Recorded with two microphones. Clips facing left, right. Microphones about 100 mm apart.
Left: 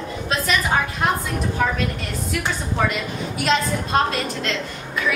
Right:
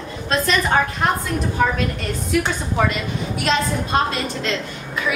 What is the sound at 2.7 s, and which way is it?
Speech, centre (ahead or behind).